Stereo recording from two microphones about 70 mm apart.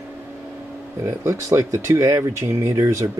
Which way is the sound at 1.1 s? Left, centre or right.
Right.